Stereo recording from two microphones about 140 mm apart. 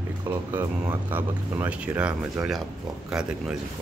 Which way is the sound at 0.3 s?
15° right (ahead or behind).